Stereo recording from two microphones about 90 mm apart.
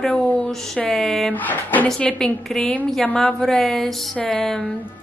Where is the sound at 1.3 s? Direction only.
20° left (ahead or behind).